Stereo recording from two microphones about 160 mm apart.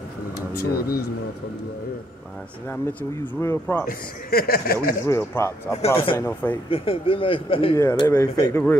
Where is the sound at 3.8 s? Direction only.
70° left (ahead or behind).